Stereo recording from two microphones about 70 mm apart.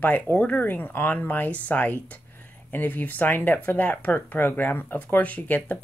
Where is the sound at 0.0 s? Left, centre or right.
Left.